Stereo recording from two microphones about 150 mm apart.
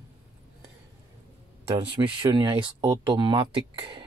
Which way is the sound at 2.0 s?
30° right (ahead or behind).